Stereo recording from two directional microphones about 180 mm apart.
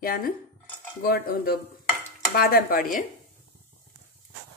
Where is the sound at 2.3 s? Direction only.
55° left (ahead or behind).